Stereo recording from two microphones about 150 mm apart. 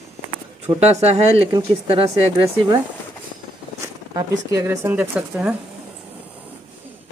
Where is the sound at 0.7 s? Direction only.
45° right (ahead or behind).